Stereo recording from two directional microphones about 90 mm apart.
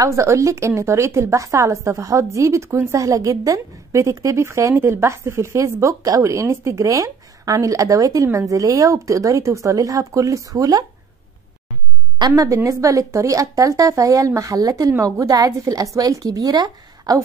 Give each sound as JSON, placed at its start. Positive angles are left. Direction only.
{"t": 0.0, "sound": "a woman's voice", "side_deg": -35}
{"t": 12.2, "sound": "a woman's voice", "side_deg": -40}